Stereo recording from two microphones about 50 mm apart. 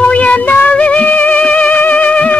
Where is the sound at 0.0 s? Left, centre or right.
Left.